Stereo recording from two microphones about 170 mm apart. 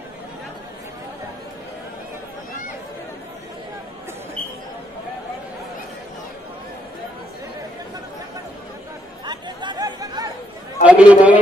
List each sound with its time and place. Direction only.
9.2 s chatter: 25° right (ahead or behind)
10.8 s a man's voice: 5° right (ahead or behind)